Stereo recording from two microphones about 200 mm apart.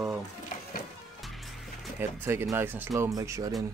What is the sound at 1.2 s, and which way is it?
Music, centre (ahead or behind).